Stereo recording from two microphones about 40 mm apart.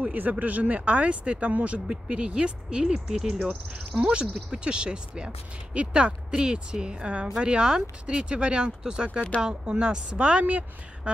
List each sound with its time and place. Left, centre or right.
0.0 s speech: right
2.8 s speech: centre
3.7 s speech: right